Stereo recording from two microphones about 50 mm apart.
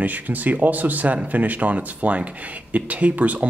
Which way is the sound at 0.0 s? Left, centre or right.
Right.